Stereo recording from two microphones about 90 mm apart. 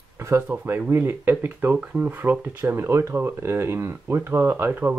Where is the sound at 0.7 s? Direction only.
25° right (ahead or behind).